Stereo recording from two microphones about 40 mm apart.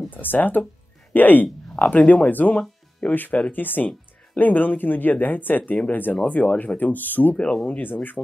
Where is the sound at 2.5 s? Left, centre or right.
Left.